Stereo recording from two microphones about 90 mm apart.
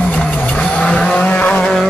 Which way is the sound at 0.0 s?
15° left (ahead or behind).